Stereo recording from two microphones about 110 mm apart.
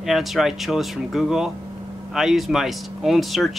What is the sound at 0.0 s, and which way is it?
Speech, centre (ahead or behind).